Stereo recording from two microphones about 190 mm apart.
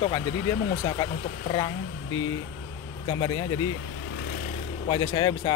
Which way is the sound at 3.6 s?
90° left.